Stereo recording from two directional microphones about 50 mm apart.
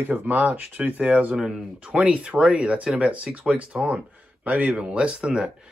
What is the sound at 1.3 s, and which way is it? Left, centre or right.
Speech, centre.